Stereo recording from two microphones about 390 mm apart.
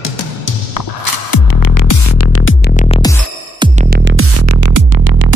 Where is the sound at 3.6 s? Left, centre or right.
Centre; by 5.3 s right.